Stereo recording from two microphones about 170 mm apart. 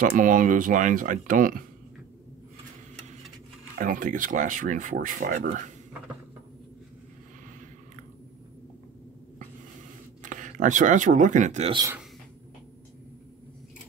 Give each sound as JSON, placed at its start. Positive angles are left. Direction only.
{"t": 0.0, "sound": "speech", "side_deg": -50}
{"t": 3.7, "sound": "speech", "side_deg": -50}
{"t": 10.2, "sound": "speech", "side_deg": -50}